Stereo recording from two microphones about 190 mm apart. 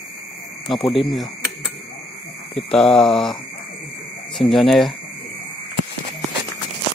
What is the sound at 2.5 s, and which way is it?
Speech, 5° left (ahead or behind).